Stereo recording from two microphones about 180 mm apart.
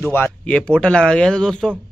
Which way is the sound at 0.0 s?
10° left (ahead or behind).